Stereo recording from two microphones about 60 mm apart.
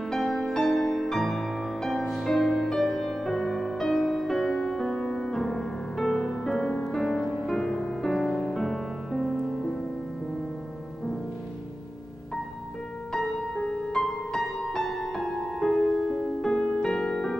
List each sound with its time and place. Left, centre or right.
0.1 s music: centre
13.1 s music: centre
16.0 s music: centre
16.3 s music: centre